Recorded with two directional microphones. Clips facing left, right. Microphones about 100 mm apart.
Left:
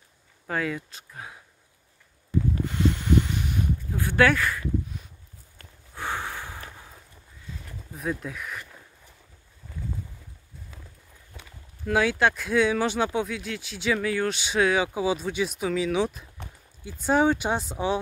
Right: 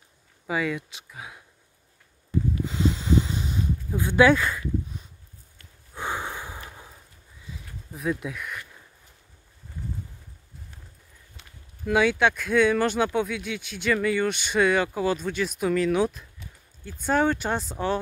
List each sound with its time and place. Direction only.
0.5 s speech: centre (ahead or behind)
2.7 s a sound: 20° right (ahead or behind)
5.9 s sniff: 15° right (ahead or behind)
7.9 s speech: centre (ahead or behind)
11.3 s clip-clop: 90° left
11.8 s speech: centre (ahead or behind)
16.8 s speech: 10° left (ahead or behind)